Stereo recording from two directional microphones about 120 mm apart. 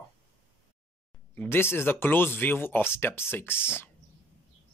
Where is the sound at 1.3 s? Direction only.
20° left (ahead or behind).